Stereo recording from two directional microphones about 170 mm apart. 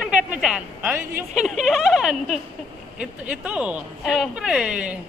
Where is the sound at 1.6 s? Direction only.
Centre (ahead or behind).